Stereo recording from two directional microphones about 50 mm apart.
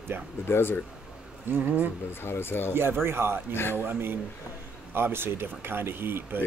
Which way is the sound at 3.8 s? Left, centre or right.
Right.